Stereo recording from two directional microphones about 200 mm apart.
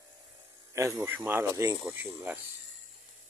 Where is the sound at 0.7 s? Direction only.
10° right (ahead or behind).